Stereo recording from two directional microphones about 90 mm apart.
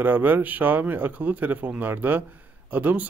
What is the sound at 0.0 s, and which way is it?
Speech, 20° right (ahead or behind).